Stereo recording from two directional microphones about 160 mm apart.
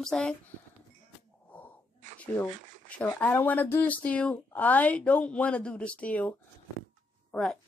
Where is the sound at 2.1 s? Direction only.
10° left (ahead or behind).